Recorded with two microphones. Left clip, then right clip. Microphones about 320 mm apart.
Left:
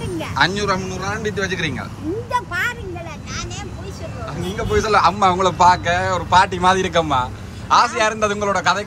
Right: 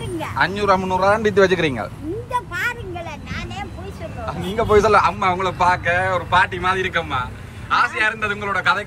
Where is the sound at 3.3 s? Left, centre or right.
Right.